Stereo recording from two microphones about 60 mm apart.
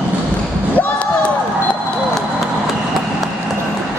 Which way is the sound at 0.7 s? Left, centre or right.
Left.